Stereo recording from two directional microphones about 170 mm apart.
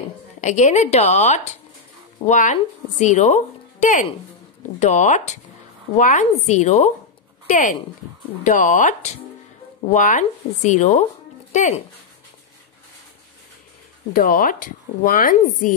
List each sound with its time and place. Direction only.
0.4 s speech: 45° left (ahead or behind)
14.1 s speech: 55° left (ahead or behind)